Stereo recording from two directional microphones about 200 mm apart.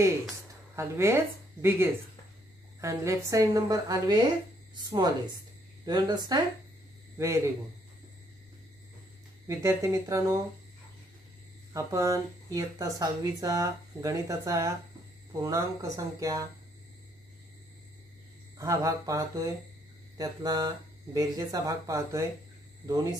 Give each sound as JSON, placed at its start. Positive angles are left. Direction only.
{"t": 0.7, "sound": "speech", "side_deg": -15}
{"t": 9.5, "sound": "speech", "side_deg": -15}
{"t": 11.7, "sound": "speech", "side_deg": -15}
{"t": 18.6, "sound": "speech", "side_deg": -15}